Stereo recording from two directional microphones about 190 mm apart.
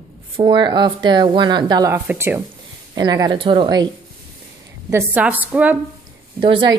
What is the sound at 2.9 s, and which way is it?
Speech, 20° right (ahead or behind).